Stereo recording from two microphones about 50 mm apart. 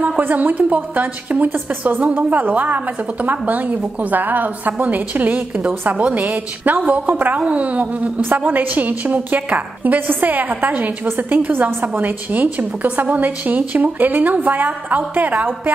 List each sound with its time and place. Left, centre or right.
0.2 s a woman's voice: right